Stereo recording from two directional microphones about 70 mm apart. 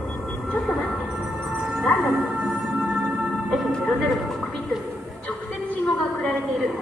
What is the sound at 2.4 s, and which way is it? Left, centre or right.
Music, centre.